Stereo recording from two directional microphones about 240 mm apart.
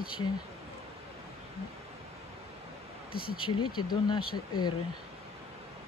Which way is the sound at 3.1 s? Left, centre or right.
Left.